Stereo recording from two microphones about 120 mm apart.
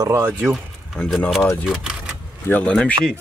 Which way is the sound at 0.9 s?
10° left (ahead or behind).